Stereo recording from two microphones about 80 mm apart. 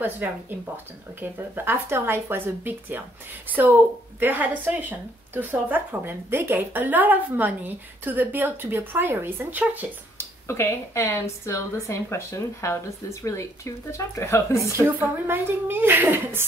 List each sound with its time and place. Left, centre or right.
0.2 s a woman's voice: right
4.2 s a woman's voice: right
10.1 s speech: left
14.6 s a woman's voice: right